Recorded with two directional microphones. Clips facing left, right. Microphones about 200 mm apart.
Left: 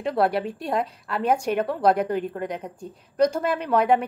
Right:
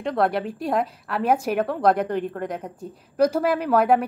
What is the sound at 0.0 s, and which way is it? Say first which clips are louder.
A woman's voice: even; 5° left (ahead or behind).